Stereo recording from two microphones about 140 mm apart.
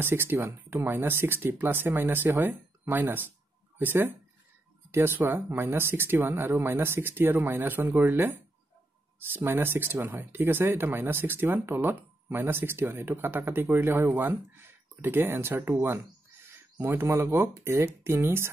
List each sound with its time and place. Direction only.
0.0 s speech: 15° right (ahead or behind)